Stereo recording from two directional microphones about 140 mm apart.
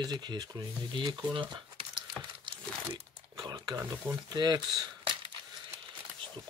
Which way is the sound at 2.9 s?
30° right (ahead or behind).